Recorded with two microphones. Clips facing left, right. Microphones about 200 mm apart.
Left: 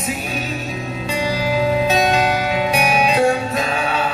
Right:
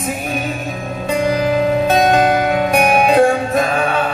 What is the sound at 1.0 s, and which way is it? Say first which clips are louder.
Music: right 6 dB; 55° right (ahead or behind).